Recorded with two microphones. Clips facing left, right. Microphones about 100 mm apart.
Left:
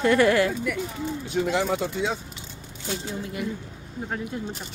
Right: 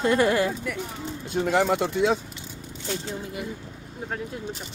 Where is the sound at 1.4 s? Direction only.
55° right (ahead or behind).